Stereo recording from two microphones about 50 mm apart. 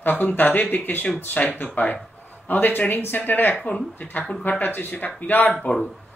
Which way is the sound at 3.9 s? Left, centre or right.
Left.